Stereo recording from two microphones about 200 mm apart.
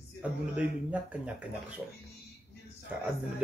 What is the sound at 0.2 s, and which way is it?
Speech, 5° right (ahead or behind).